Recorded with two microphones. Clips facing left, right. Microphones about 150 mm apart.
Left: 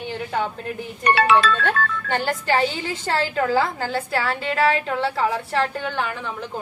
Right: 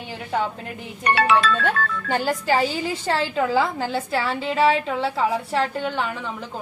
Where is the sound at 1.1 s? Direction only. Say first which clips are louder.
Left 1 dB; 80° left.